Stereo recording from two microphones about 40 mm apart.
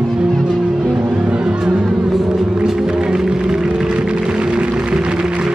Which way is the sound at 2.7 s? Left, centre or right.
Centre.